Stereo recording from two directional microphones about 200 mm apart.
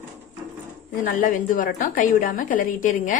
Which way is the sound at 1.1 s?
40° left (ahead or behind).